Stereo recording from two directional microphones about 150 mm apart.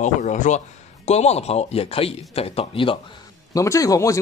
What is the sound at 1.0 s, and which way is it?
A man's voice, 45° left (ahead or behind).